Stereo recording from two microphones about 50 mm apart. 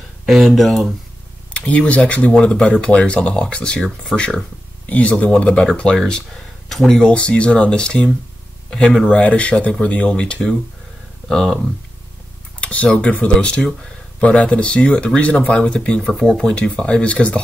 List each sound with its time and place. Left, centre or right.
0.3 s speech: centre
1.5 s speech: left
4.1 s speech: centre
4.8 s speech: left
6.7 s speech: centre
7.1 s speech: left
9.1 s speech: left
16.2 s speech: centre